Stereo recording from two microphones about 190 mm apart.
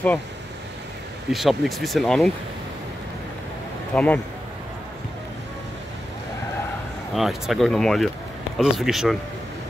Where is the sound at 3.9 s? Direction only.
10° left (ahead or behind).